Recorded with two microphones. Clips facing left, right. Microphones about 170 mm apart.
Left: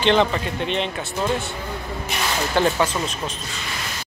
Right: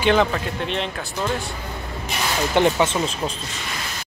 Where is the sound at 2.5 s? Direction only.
20° right (ahead or behind).